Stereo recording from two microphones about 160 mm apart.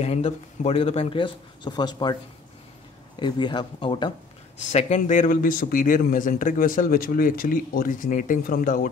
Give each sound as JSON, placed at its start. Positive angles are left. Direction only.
{"t": 0.0, "sound": "speech", "side_deg": 40}
{"t": 3.2, "sound": "speech", "side_deg": 30}
{"t": 4.6, "sound": "a man's voice", "side_deg": 45}